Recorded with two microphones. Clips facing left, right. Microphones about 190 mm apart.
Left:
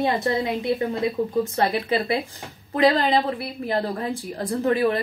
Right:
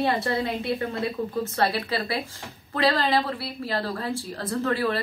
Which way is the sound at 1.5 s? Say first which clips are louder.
Left 1 dB; 20° left (ahead or behind).